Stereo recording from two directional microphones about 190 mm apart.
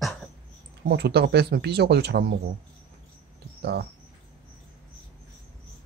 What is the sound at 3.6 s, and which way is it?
Speech, 60° right (ahead or behind).